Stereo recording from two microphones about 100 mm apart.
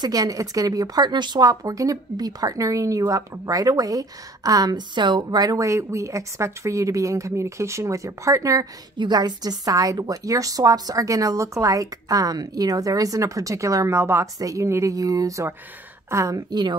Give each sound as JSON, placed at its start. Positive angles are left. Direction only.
{"t": 0.0, "sound": "speech", "side_deg": -40}
{"t": 8.9, "sound": "speech", "side_deg": -45}